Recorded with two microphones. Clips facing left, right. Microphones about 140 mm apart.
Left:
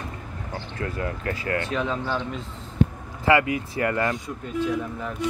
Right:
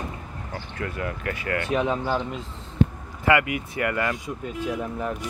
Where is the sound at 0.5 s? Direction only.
30° left (ahead or behind).